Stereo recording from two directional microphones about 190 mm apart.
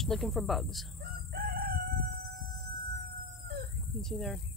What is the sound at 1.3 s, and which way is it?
Chicken, 50° right (ahead or behind).